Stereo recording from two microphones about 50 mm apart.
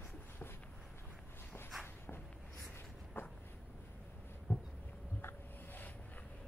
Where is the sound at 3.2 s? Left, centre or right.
Left.